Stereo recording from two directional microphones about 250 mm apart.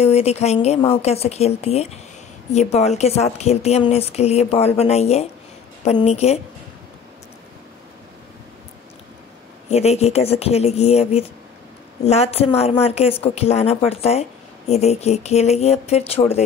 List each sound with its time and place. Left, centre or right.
0.0 s a woman's voice: left
9.7 s a woman's voice: left